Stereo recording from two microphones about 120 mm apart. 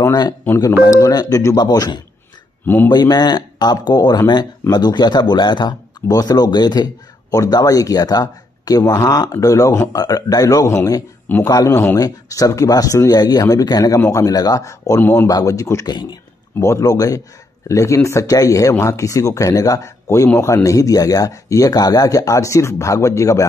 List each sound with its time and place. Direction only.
0.0 s speech: 30° left (ahead or behind)
2.6 s speech: 15° left (ahead or behind)
2.9 s speech: 35° left (ahead or behind)
11.7 s speech: 20° left (ahead or behind); by 16.2 s 35° left (ahead or behind)
16.5 s speech: 25° left (ahead or behind)